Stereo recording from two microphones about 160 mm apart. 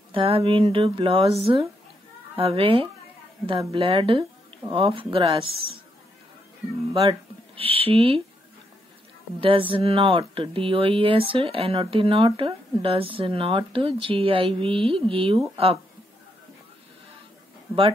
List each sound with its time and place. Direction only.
0.1 s speech: 35° right (ahead or behind)
7.0 s speech: 35° right (ahead or behind)
9.4 s speech: 35° right (ahead or behind)